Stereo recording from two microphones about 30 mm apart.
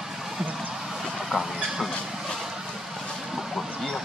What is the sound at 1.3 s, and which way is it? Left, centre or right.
Train, centre.